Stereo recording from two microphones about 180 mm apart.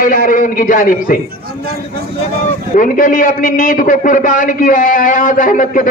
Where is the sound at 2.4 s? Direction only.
45° left (ahead or behind).